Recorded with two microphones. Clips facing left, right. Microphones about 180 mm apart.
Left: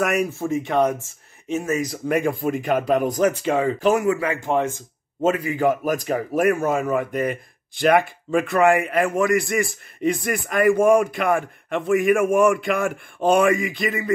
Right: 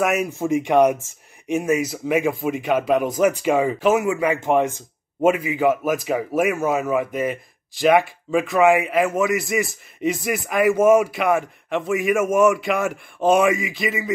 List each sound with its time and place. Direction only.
0.0 s a man's voice: centre (ahead or behind)
0.3 s a man's voice: 15° right (ahead or behind)
5.4 s a man's voice: centre (ahead or behind)